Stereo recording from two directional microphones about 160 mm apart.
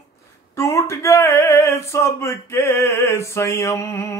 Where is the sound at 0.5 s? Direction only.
15° left (ahead or behind).